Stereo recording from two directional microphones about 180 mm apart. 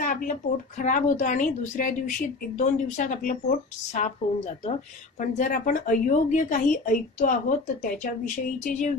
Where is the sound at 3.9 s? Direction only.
35° left (ahead or behind).